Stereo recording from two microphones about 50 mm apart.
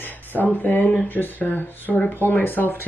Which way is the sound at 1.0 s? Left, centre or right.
Left.